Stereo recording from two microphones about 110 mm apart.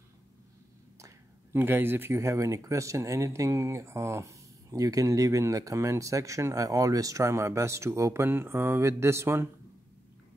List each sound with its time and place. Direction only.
0.9 s speech: 25° right (ahead or behind)